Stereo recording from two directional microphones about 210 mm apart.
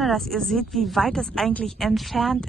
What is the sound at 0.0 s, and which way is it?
Speech, centre (ahead or behind).